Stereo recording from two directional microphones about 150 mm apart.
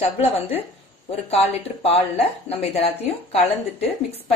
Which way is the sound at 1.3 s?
40° left (ahead or behind).